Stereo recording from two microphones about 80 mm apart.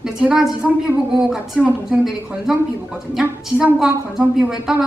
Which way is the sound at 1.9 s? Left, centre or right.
Centre.